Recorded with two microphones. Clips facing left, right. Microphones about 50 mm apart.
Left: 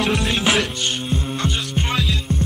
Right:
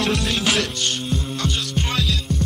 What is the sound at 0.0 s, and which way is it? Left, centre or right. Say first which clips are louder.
Music: left 1 dB; centre.